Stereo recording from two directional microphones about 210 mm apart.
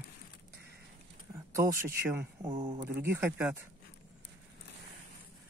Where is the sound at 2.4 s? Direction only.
20° right (ahead or behind).